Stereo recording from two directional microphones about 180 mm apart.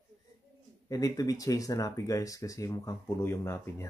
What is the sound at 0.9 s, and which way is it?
Speech, 20° left (ahead or behind).